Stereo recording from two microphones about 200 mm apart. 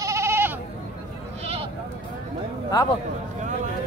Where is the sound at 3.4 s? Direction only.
35° right (ahead or behind).